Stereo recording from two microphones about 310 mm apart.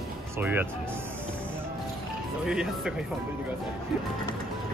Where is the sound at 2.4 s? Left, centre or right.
Centre.